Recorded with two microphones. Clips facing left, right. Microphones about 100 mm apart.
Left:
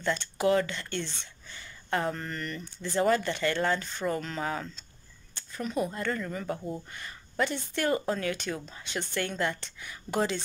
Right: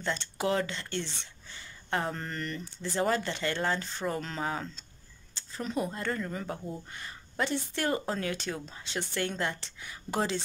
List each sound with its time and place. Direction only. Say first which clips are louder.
0.0 s a woman's voice: left 4 dB; 25° right (ahead or behind)
1.5 s a sound: left 2 dB; 20° right (ahead or behind)
2.1 s a woman's voice: even; 25° right (ahead or behind)
2.6 s speech: left 1 dB; 5° right (ahead or behind)
3.0 s a woman's voice: left 4 dB; 25° right (ahead or behind)